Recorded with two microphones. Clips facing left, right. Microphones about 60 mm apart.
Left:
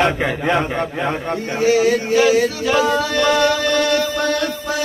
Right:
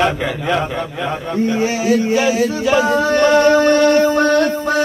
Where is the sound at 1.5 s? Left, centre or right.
Right.